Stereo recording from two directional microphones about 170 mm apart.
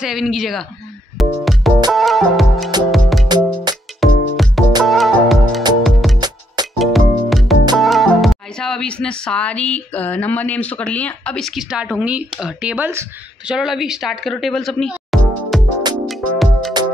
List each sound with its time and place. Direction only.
0.0 s speech: centre (ahead or behind)
1.1 s music: centre (ahead or behind)
3.7 s music: 25° right (ahead or behind)
4.0 s music: centre (ahead or behind)
6.1 s music: 25° right (ahead or behind)
6.8 s music: centre (ahead or behind)
7.7 s speech: centre (ahead or behind)
16.1 s music: centre (ahead or behind)